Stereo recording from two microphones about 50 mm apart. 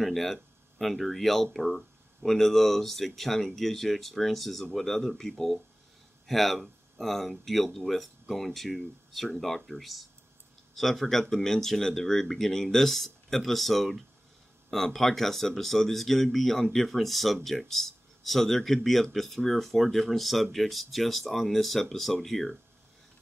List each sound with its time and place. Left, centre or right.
0.0 s speech: centre